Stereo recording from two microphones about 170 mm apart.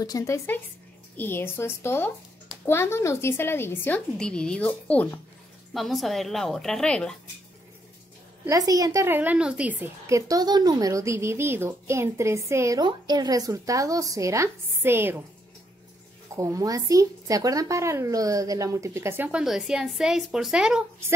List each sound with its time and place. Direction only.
0.0 s speech: 20° left (ahead or behind); by 7.2 s 5° left (ahead or behind)
8.5 s a woman's voice: 20° right (ahead or behind)
16.3 s a woman's voice: 20° right (ahead or behind)